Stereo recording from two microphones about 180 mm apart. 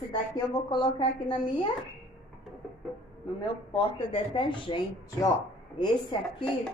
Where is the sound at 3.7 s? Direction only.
30° left (ahead or behind).